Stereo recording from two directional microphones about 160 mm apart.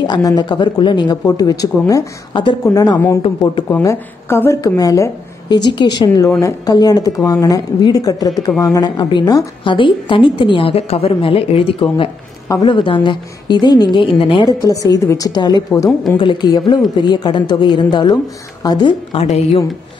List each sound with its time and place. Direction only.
0.0 s a woman's voice: 25° left (ahead or behind)
19.2 s speech: 40° left (ahead or behind)